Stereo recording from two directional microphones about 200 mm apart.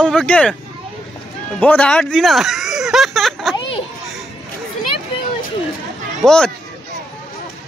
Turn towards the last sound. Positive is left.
turn(degrees=5)  # may be behind; listen again after turning